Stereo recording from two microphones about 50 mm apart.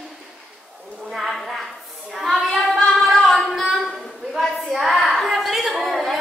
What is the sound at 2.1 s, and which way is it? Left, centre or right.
Child singing, centre.